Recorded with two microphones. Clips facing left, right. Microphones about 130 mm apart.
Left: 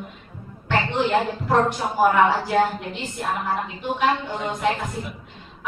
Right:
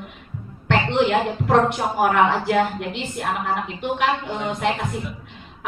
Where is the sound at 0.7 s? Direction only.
60° right (ahead or behind).